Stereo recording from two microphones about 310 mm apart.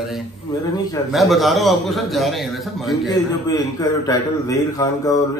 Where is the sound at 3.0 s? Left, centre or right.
Centre.